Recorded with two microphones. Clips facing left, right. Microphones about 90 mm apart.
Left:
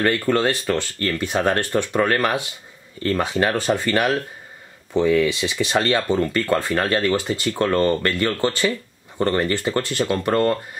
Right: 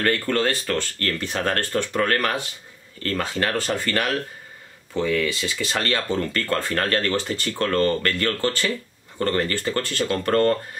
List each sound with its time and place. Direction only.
0.0 s speech: 20° left (ahead or behind)